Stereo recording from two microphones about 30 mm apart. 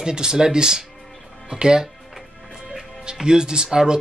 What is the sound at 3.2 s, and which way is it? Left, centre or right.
Speech, right.